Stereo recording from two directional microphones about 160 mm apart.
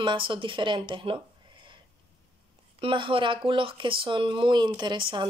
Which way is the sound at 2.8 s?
30° right (ahead or behind).